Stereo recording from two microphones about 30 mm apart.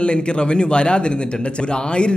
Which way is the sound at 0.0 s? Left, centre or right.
Left.